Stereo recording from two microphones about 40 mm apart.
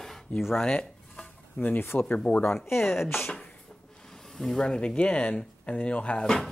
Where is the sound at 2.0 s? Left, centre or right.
Left.